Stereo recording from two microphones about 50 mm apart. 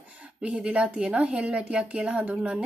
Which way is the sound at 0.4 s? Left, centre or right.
Right.